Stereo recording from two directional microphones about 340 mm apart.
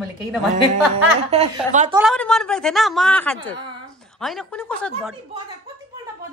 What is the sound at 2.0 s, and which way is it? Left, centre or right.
A woman's voice, centre.